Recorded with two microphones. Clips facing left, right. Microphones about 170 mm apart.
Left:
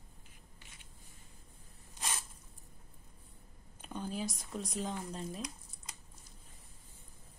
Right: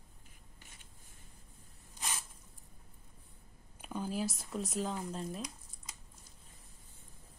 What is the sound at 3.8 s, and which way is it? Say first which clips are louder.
Speech: right 2 dB; 5° right (ahead or behind).